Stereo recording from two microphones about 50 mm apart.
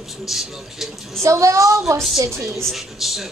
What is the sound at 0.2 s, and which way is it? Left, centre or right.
Speech, centre.